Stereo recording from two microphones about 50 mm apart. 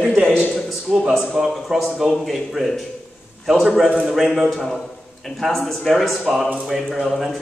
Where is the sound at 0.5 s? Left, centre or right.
Centre.